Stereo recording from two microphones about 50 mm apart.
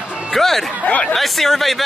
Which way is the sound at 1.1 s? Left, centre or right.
Centre.